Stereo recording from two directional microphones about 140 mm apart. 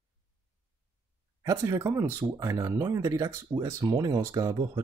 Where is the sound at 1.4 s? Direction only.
25° right (ahead or behind).